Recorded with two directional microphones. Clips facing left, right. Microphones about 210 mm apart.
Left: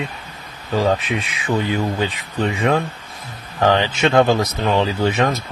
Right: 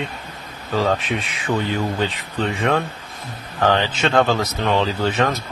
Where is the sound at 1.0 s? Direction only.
45° right (ahead or behind).